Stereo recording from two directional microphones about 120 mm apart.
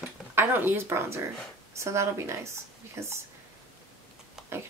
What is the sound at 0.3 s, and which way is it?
Speech, 20° right (ahead or behind).